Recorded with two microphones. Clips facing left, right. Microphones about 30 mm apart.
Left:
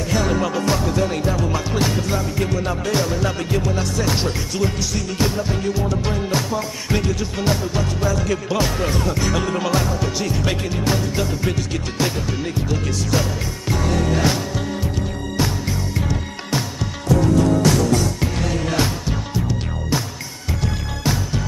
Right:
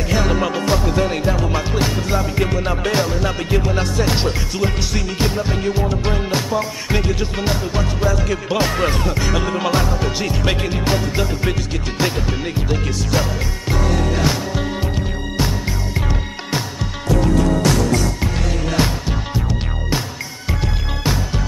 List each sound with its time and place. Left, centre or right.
0.1 s music: centre
2.3 s music: right
3.1 s speech: centre
3.4 s music: right
8.7 s speech: right
9.0 s speech: centre
9.7 s music: right
15.3 s music: centre
19.0 s music: centre